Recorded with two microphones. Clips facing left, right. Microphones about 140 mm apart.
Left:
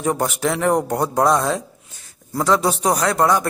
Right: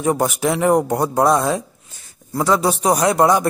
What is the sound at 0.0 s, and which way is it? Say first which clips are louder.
Speech: right 2 dB; 5° right (ahead or behind).